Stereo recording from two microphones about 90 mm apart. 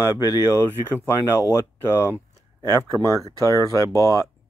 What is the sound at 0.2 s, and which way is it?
Speech, 45° left (ahead or behind).